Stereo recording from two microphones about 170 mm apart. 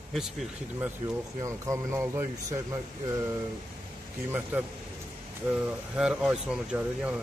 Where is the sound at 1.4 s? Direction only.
20° right (ahead or behind).